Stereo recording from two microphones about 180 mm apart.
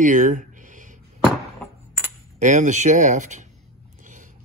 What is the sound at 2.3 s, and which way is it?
Speech, 45° right (ahead or behind).